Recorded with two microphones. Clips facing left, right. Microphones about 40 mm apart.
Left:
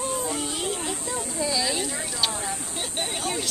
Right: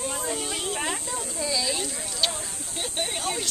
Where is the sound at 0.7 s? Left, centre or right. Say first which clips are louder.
Right 2 dB; right.